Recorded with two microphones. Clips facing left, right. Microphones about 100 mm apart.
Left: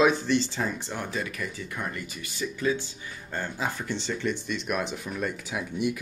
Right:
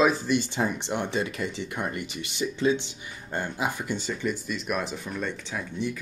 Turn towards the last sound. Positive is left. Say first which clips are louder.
# left 2 dB
turn(degrees=15)  # may be behind; listen again after turning